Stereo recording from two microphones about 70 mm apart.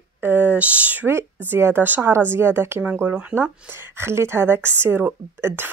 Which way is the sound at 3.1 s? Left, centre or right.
Right.